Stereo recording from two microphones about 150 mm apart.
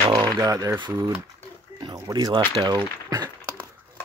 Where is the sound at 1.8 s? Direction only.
30° right (ahead or behind).